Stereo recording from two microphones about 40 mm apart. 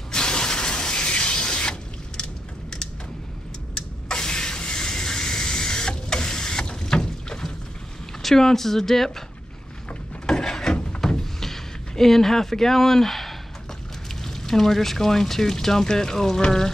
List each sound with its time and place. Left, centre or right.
0.1 s fill: left
3.7 s a sound: centre
8.2 s speech: centre
10.2 s wood: centre
11.1 s a sound: centre
14.2 s speech: centre